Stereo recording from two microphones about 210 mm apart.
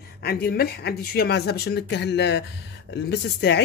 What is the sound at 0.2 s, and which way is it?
Speech, 50° left (ahead or behind).